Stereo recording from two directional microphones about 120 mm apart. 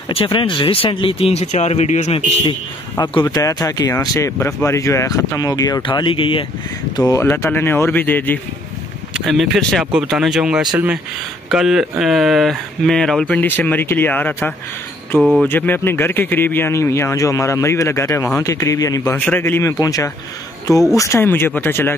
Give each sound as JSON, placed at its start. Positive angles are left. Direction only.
{"t": 0.1, "sound": "speech", "side_deg": 50}
{"t": 3.0, "sound": "speech", "side_deg": 35}
{"t": 5.8, "sound": "speech", "side_deg": 45}
{"t": 7.0, "sound": "speech", "side_deg": 25}
{"t": 9.1, "sound": "speech", "side_deg": 0}
{"t": 15.1, "sound": "speech", "side_deg": -5}
{"t": 15.4, "sound": "speech", "side_deg": 15}
{"t": 19.1, "sound": "speech", "side_deg": 15}